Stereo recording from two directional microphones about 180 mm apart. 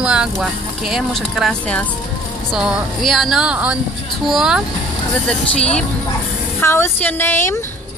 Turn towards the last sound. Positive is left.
turn(degrees=15)  # may be behind; listen again after turning